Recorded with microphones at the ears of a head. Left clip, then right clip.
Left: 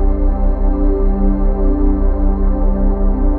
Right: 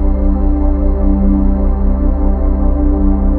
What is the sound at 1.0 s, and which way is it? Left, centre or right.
Music, right.